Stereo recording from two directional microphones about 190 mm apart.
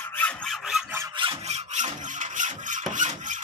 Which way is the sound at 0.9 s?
25° right (ahead or behind).